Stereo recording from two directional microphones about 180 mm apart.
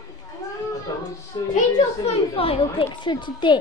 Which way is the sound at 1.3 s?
20° left (ahead or behind).